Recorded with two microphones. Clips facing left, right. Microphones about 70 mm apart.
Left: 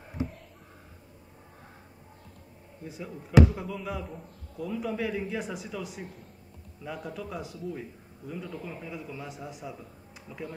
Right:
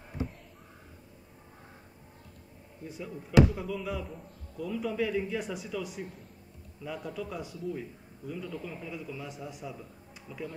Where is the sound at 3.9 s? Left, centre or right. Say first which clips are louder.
Even; centre.